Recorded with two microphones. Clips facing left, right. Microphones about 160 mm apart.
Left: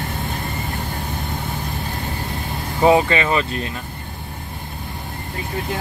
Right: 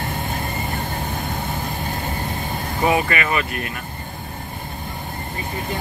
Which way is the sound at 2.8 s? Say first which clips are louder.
Left 5 dB; 25° left (ahead or behind).